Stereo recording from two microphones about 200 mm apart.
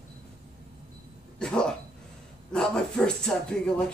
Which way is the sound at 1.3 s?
5° left (ahead or behind).